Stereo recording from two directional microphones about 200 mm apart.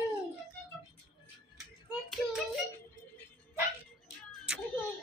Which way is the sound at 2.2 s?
Centre (ahead or behind).